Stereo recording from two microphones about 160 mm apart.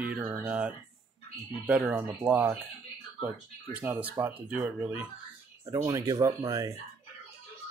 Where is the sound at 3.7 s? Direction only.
10° right (ahead or behind).